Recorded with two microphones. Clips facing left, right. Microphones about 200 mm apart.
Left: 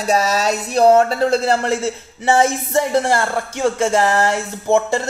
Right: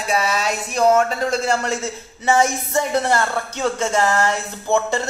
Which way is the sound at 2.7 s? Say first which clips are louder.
Left 3 dB; 30° left (ahead or behind).